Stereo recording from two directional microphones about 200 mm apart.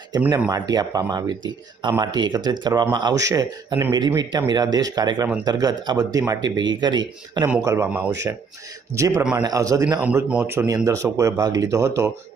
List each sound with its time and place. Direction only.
0.2 s speech: 10° right (ahead or behind)
7.4 s speech: 10° right (ahead or behind)